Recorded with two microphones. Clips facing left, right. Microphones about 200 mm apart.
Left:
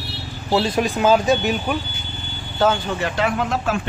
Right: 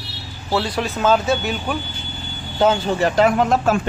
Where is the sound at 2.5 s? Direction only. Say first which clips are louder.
Right 2 dB; 20° right (ahead or behind).